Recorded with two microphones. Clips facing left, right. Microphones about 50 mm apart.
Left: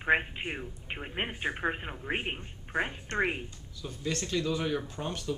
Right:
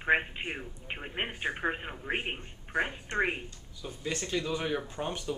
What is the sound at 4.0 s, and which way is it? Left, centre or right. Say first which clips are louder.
Speech: left 1 dB; centre.